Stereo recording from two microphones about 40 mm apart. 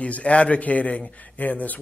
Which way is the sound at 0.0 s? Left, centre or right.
Left.